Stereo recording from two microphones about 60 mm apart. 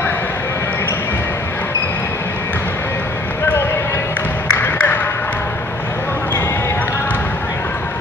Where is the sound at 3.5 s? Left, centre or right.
Left.